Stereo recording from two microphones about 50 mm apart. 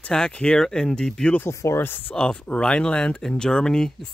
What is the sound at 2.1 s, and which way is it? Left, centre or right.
Speech, centre.